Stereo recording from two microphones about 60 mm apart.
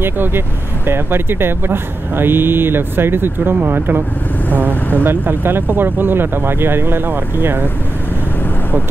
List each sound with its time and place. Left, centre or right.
0.0 s speech: right
5.0 s speech: right